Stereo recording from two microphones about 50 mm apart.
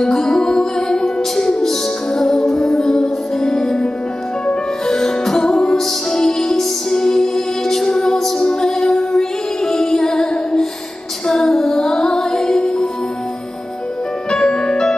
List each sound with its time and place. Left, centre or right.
0.0 s music: centre
14.3 s music: centre